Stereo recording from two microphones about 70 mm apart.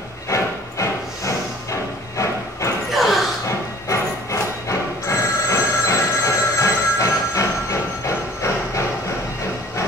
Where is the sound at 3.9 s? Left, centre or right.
Left.